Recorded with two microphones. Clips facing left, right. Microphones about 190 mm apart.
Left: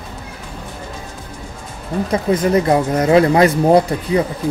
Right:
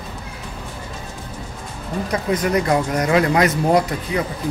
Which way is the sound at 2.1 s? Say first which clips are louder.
Left 4 dB; 30° left (ahead or behind).